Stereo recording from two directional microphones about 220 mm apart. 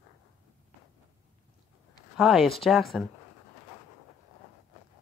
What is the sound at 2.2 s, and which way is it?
Speech, centre (ahead or behind).